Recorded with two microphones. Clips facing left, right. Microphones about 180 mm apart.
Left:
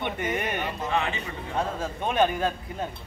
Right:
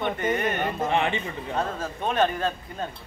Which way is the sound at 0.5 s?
50° right (ahead or behind).